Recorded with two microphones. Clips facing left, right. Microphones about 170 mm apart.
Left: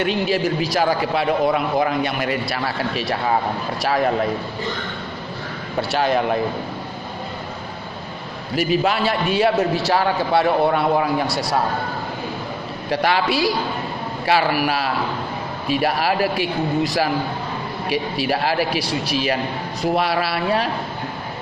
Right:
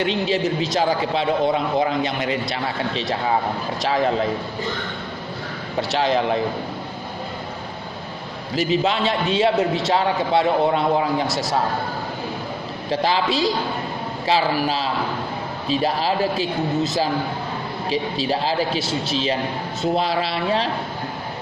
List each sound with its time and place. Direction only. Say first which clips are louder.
0.0 s a man's voice: left 1 dB; 25° right (ahead or behind)
5.9 s a man's voice: left 1 dB; 25° right (ahead or behind)
8.5 s a man's voice: left 1 dB; 25° right (ahead or behind)
13.1 s a man's voice: left 1 dB; 20° right (ahead or behind)
14.3 s a man's voice: left 1 dB; 70° left (ahead or behind)
15.9 s a man's voice: left 1 dB; 25° right (ahead or behind)